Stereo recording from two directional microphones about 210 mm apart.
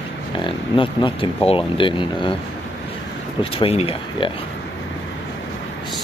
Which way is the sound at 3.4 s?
25° left (ahead or behind).